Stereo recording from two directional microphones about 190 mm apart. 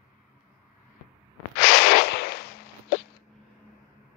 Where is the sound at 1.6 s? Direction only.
55° left (ahead or behind).